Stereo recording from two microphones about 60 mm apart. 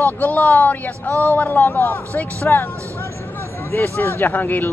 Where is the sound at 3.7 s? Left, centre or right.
Left.